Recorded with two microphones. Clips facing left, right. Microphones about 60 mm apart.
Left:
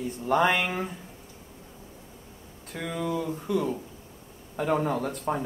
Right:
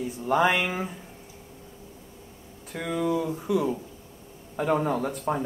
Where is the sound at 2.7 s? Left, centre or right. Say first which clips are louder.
Right 4 dB; centre.